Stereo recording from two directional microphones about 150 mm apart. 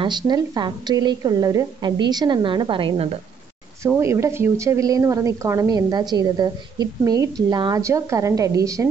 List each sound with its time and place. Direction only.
0.0 s a woman's voice: 30° right (ahead or behind)
3.8 s a woman's voice: 20° right (ahead or behind)